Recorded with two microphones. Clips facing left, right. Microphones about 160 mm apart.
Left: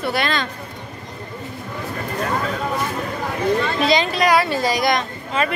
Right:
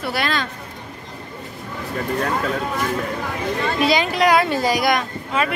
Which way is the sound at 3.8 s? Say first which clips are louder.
Even; 10° right (ahead or behind).